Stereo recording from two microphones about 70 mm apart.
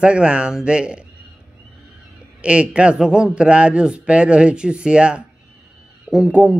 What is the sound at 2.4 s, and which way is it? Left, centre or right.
A man's voice, centre.